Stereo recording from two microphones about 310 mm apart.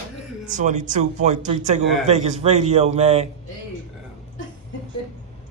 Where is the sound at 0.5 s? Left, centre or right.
Right.